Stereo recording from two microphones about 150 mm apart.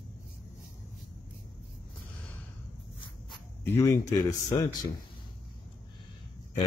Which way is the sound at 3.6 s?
15° left (ahead or behind).